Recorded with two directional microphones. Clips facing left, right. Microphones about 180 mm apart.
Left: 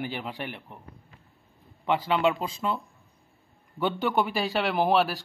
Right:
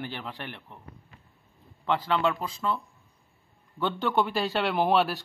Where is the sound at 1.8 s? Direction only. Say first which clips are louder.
Left 2 dB; 15° left (ahead or behind).